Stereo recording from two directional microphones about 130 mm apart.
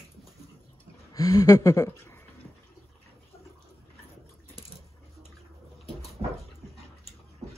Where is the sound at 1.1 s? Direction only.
25° left (ahead or behind).